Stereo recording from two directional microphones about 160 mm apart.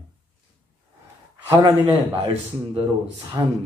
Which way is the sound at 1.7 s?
35° right (ahead or behind).